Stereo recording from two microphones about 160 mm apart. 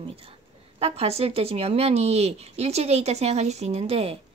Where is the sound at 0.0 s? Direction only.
35° right (ahead or behind).